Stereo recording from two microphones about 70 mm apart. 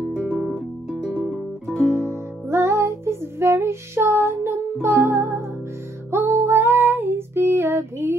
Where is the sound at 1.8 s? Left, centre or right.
Right.